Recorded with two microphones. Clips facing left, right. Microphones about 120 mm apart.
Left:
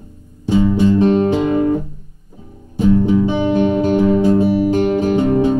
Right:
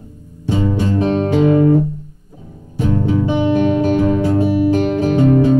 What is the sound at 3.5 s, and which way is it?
Music, 20° left (ahead or behind).